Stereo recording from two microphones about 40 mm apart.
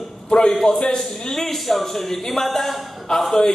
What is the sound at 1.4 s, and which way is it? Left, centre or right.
A man's voice, centre.